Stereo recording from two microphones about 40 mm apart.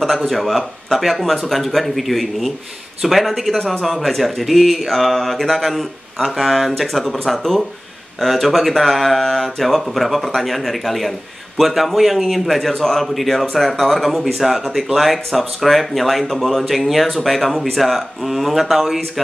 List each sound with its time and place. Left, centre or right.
0.3 s speech: centre